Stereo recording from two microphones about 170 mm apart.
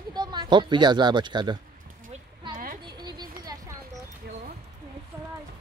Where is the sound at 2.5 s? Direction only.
55° right (ahead or behind).